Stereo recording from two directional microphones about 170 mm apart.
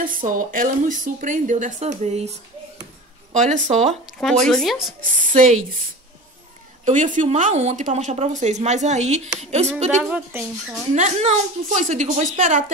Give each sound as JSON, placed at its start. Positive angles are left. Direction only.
{"t": 0.0, "sound": "speech", "side_deg": -55}
{"t": 3.3, "sound": "speech", "side_deg": -45}
{"t": 4.0, "sound": "speech", "side_deg": 0}
{"t": 5.3, "sound": "speech", "side_deg": -45}
{"t": 6.8, "sound": "a woman's voice", "side_deg": -50}
{"t": 10.1, "sound": "speech", "side_deg": -5}
{"t": 11.0, "sound": "speech", "side_deg": -40}